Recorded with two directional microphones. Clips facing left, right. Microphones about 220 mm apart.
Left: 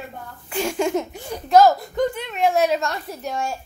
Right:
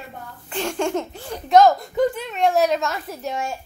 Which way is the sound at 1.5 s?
5° left (ahead or behind).